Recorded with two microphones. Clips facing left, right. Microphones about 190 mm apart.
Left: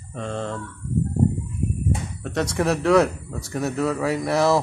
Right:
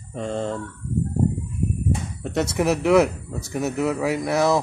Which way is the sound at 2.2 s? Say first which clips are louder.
Right 1 dB; 10° right (ahead or behind).